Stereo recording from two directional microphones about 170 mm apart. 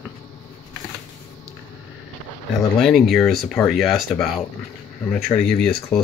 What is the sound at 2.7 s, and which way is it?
Speech, centre (ahead or behind).